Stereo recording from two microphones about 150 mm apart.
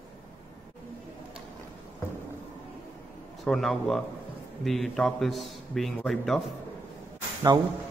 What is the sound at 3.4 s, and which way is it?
A man's voice, centre (ahead or behind).